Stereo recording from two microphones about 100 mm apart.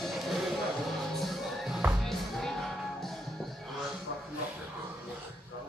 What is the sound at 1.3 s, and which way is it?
Music, centre (ahead or behind).